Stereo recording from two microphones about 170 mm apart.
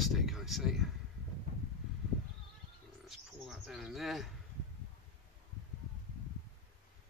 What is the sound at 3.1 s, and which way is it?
Bird, centre (ahead or behind).